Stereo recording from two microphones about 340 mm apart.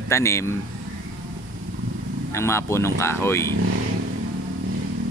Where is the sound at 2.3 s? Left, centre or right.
Centre.